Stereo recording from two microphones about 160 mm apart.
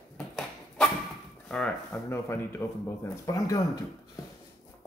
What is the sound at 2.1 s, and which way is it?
Speech, 15° left (ahead or behind).